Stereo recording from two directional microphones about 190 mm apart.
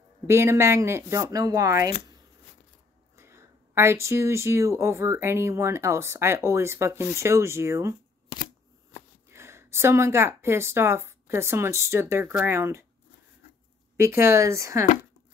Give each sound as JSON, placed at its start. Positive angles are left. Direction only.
{"t": 0.3, "sound": "speech", "side_deg": -15}
{"t": 3.2, "sound": "speech", "side_deg": -15}
{"t": 9.3, "sound": "speech", "side_deg": -15}
{"t": 13.9, "sound": "speech", "side_deg": -15}